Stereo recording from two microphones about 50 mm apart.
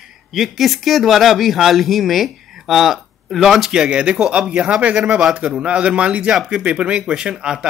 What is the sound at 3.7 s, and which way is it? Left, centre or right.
Speech, centre.